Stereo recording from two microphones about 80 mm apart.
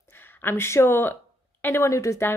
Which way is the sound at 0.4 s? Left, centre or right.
Left.